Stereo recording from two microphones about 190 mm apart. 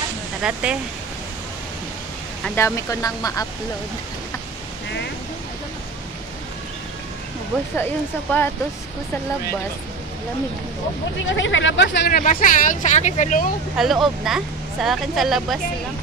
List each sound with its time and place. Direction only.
0.4 s speech: 5° right (ahead or behind)
2.4 s speech: 15° left (ahead or behind)
7.7 s speech: 10° left (ahead or behind)
11.2 s speech: 80° left; by 13.5 s 40° left (ahead or behind)
13.7 s speech: centre (ahead or behind)